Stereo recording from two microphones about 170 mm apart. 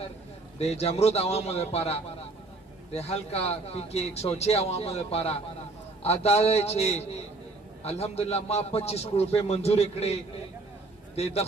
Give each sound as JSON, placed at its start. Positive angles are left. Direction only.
{"t": 0.6, "sound": "speech", "side_deg": 40}